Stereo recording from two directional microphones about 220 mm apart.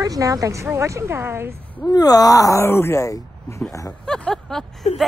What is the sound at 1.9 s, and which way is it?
Speech, 15° left (ahead or behind).